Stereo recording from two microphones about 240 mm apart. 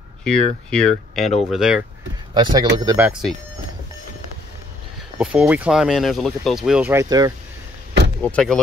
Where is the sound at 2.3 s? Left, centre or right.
Centre.